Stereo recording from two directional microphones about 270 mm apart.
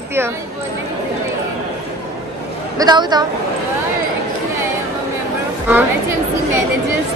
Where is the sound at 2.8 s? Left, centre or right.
Centre.